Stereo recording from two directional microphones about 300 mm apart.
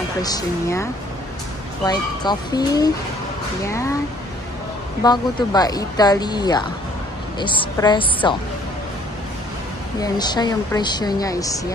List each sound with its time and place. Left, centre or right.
0.2 s a woman's voice: centre
1.9 s a woman's voice: centre
5.0 s a woman's voice: centre
9.9 s a woman's voice: centre